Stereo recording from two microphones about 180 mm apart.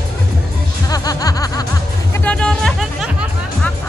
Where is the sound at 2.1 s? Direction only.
5° left (ahead or behind).